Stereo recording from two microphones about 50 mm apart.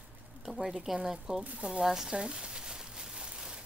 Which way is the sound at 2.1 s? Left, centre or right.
Centre.